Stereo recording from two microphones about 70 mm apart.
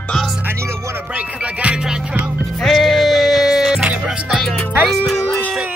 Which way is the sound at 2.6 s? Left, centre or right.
Centre.